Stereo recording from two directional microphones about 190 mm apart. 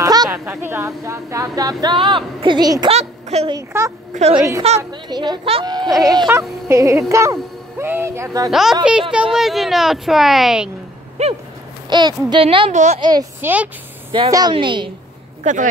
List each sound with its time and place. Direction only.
0.0 s speech: 20° right (ahead or behind)
2.9 s speech: 35° right (ahead or behind)
3.5 s speech: 15° right (ahead or behind)
4.1 s a woman's voice: 35° right (ahead or behind)
4.4 s speech: 20° right (ahead or behind)
8.5 s a child's voice: centre (ahead or behind)
11.2 s a sound: 35° right (ahead or behind)
11.9 s speech: 25° right (ahead or behind)
13.0 s speech: 20° right (ahead or behind)
14.1 s speech: 25° right (ahead or behind)
15.5 s a sound: 40° right (ahead or behind)